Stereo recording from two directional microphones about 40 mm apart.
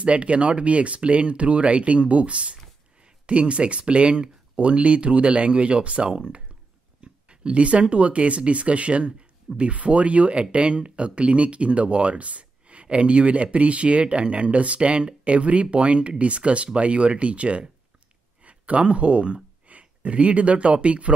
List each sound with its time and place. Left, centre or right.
0.0 s speech: right
7.0 s a sound: right
7.9 s speech: right